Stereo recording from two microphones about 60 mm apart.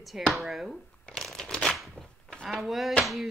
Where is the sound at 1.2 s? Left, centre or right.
Centre.